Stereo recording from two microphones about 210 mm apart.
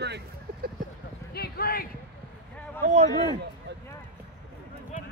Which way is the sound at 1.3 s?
45° left (ahead or behind).